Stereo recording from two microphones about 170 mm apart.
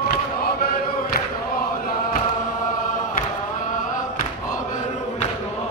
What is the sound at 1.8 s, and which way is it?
Choir, 55° left (ahead or behind).